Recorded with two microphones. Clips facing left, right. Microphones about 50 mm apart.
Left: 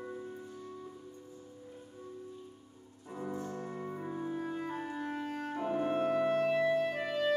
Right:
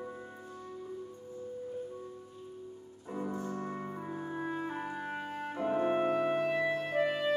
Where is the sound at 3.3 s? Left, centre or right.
Centre.